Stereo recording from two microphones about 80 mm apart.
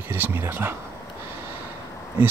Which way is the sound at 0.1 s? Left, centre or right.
Right.